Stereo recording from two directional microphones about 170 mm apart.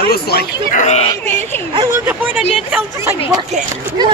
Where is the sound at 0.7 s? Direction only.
45° left (ahead or behind).